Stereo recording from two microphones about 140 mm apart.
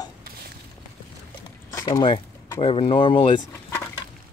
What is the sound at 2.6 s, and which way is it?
Speech, 40° left (ahead or behind).